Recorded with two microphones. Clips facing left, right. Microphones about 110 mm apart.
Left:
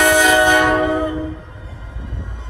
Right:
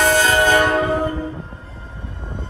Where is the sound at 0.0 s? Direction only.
15° left (ahead or behind).